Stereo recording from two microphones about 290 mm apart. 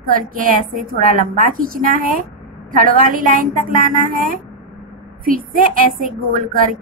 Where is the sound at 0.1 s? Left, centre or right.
Right.